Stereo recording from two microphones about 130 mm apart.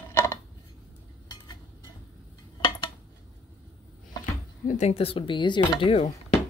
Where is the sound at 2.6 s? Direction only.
40° left (ahead or behind).